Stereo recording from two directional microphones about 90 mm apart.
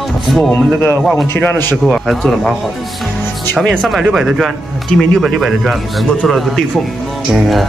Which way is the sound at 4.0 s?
10° right (ahead or behind).